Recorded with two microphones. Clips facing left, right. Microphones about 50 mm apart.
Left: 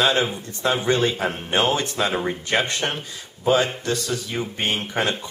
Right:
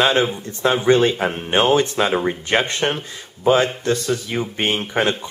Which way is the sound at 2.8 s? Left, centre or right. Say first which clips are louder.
Right 5 dB; centre.